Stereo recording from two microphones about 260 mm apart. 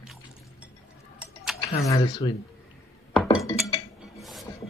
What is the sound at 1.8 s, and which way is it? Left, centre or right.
Speech, centre.